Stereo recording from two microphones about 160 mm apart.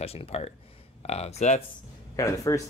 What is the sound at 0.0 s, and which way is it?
Speech, 40° left (ahead or behind).